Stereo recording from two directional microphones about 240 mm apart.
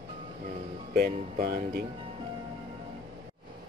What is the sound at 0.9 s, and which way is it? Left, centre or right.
Speech, right.